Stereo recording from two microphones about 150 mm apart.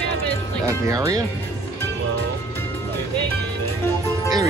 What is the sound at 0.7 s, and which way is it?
Speech, 20° right (ahead or behind).